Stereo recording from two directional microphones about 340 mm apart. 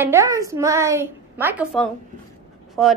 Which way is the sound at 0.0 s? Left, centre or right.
Centre.